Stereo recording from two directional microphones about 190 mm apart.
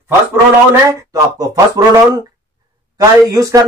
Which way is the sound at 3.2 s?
20° right (ahead or behind).